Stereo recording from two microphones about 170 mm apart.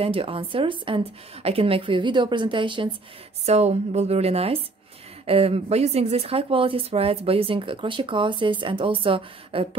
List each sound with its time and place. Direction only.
0.0 s a woman's voice: 35° right (ahead or behind)